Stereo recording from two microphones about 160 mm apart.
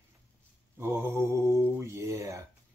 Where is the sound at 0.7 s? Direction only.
15° right (ahead or behind).